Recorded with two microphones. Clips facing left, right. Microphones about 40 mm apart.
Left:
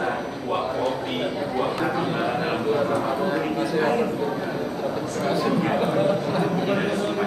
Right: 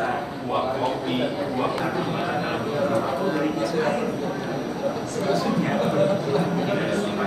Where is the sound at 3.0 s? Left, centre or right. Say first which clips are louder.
Even; centre.